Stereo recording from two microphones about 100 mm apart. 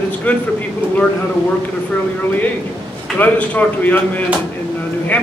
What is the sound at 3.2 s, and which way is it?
A man's voice, 15° left (ahead or behind).